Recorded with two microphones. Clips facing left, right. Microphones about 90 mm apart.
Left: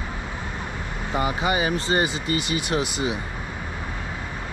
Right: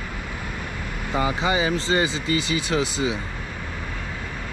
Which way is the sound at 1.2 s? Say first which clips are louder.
Right 1 dB; 25° right (ahead or behind).